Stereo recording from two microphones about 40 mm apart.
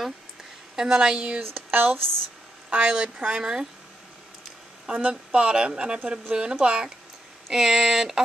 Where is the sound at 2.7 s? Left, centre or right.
Right.